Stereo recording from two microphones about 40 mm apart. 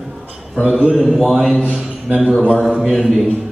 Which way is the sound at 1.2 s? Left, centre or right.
Right.